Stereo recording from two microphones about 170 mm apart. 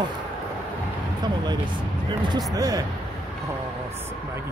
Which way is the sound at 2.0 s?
25° right (ahead or behind).